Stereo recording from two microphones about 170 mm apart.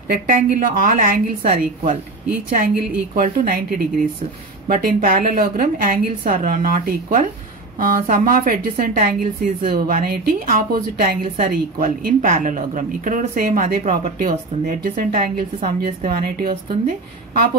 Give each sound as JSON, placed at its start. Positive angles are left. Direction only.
{"t": 0.3, "sound": "a woman's voice", "side_deg": -55}
{"t": 3.2, "sound": "a woman's voice", "side_deg": -60}